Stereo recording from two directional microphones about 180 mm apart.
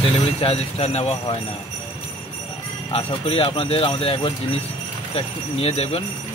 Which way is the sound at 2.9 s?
30° left (ahead or behind).